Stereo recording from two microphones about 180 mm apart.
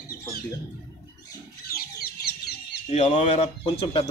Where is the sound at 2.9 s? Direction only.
40° left (ahead or behind).